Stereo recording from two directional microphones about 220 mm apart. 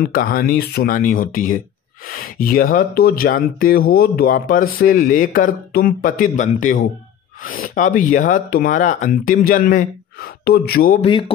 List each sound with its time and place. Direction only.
0.1 s speech: 40° left (ahead or behind)
11.0 s speech: 25° left (ahead or behind)